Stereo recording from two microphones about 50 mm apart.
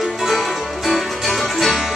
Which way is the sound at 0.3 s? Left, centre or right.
Centre.